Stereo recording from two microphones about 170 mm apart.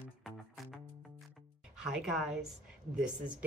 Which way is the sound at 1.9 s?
5° right (ahead or behind).